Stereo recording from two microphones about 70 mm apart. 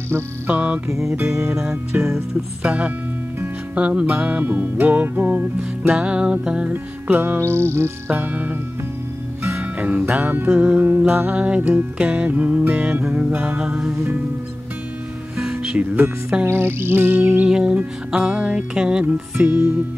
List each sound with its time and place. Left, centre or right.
0.5 s music: right
0.8 s music: right
2.6 s music: centre
5.9 s music: centre
6.7 s music: right
8.1 s music: right
9.6 s music: right
15.3 s music: centre
16.4 s music: right
17.4 s music: centre
19.3 s music: right